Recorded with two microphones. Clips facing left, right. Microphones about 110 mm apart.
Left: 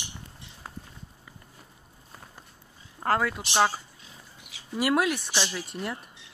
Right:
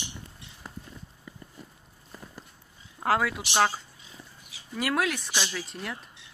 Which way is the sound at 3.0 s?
5° right (ahead or behind).